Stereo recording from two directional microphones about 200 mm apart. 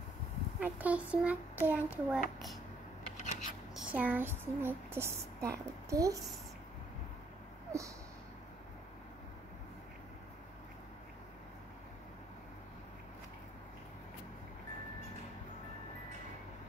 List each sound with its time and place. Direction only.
0.6 s a child's voice: 5° right (ahead or behind)
3.2 s a sound: 35° left (ahead or behind)
3.7 s speech: 10° right (ahead or behind)